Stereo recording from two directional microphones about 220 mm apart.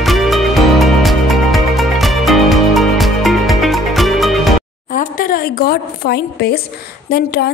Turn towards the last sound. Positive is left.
turn(degrees=45)  # may be behind; listen again after turning